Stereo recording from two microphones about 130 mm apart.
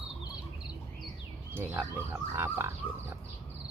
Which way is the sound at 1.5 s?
20° right (ahead or behind).